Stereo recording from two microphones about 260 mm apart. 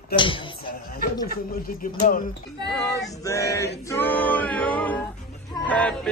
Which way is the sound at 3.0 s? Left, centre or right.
Centre.